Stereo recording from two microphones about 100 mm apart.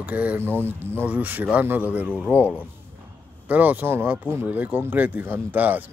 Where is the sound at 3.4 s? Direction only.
15° right (ahead or behind).